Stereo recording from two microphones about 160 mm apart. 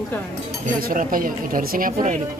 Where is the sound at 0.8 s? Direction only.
60° right (ahead or behind).